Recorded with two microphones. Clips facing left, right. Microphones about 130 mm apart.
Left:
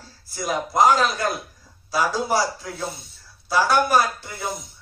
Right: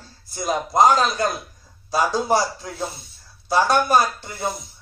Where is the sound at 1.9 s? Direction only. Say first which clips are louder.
Right 2 dB; 25° right (ahead or behind).